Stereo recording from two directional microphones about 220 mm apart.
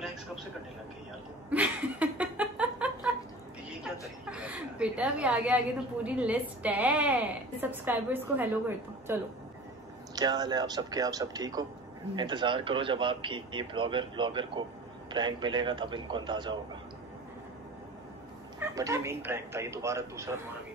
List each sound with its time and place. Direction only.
1.5 s a sound: 5° right (ahead or behind)
6.0 s a woman's voice: 5° right (ahead or behind)
18.6 s a woman's voice: 15° right (ahead or behind)